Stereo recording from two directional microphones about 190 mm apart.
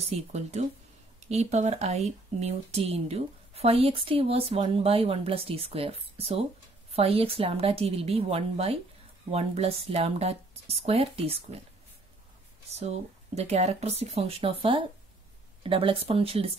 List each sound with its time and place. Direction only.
0.3 s speech: 40° right (ahead or behind)
13.3 s speech: 35° right (ahead or behind)